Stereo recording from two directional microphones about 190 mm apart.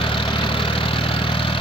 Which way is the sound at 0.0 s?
25° left (ahead or behind).